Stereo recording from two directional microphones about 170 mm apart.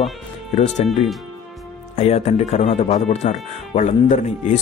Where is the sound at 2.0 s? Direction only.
40° left (ahead or behind).